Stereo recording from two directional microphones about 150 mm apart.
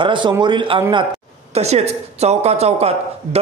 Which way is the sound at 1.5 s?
45° right (ahead or behind).